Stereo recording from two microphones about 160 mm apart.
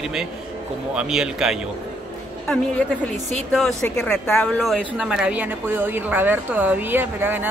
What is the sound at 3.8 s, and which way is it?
A woman's voice, 5° left (ahead or behind).